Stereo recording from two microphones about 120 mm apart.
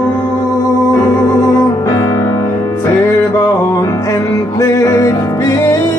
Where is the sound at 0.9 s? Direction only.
25° left (ahead or behind).